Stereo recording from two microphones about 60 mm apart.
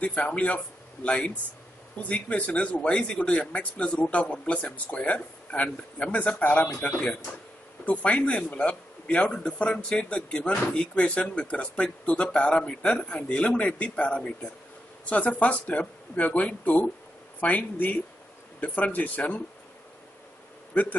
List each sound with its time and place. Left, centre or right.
0.0 s a man's voice: left